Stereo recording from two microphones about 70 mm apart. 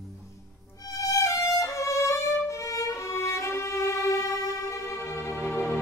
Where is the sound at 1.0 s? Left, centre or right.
Left.